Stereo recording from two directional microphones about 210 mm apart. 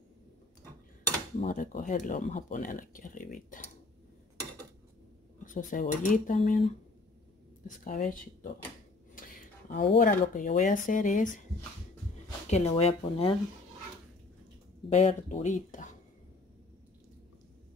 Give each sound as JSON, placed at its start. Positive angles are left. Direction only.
{"t": 1.4, "sound": "speech", "side_deg": 40}
{"t": 5.4, "sound": "speech", "side_deg": 40}
{"t": 9.9, "sound": "speech", "side_deg": 40}
{"t": 12.4, "sound": "speech", "side_deg": 30}
{"t": 14.9, "sound": "speech", "side_deg": 30}